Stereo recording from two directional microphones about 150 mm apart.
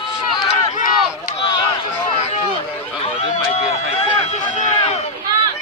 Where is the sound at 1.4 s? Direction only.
30° left (ahead or behind).